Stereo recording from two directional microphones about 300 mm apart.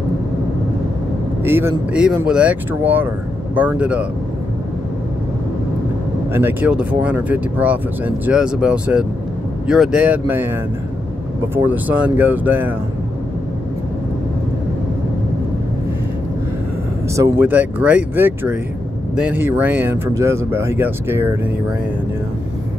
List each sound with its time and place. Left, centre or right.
1.4 s speech: centre
6.3 s speech: centre
17.1 s speech: centre